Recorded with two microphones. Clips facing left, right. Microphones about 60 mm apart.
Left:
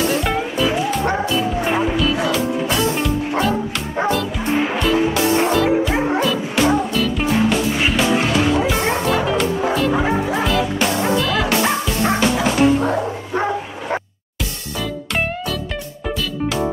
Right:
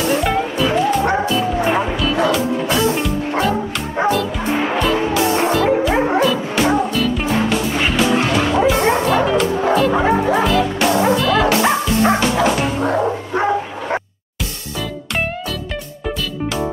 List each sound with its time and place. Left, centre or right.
0.0 s music: centre
4.1 s music: centre
10.4 s music: centre
13.0 s bow-wow: right